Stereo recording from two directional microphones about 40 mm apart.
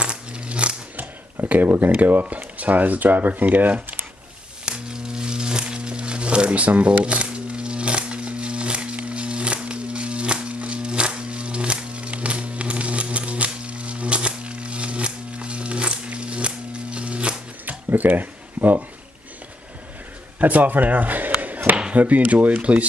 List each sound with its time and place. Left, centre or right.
0.0 s biting: right
1.4 s a sound: right
1.7 s speech: right
4.6 s crumpling: centre
17.6 s a sound: right
20.3 s speech: right